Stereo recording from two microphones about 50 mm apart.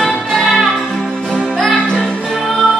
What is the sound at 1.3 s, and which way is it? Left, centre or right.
Music, centre.